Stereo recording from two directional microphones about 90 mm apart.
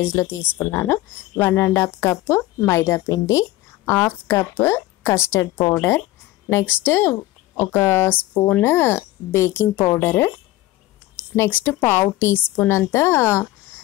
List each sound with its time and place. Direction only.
0.0 s speech: 25° left (ahead or behind)
11.3 s speech: 25° left (ahead or behind)